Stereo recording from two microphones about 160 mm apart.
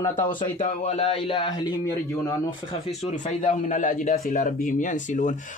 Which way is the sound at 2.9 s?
50° left (ahead or behind).